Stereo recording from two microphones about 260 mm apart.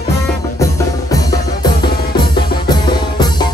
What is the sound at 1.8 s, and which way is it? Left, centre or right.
Music, centre.